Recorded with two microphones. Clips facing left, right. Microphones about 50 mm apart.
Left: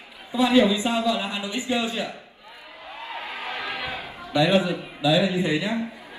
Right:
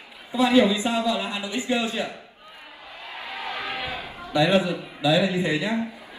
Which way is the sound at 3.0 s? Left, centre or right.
Left.